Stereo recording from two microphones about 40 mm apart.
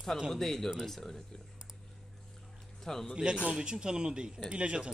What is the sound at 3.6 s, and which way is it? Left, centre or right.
Speech, right.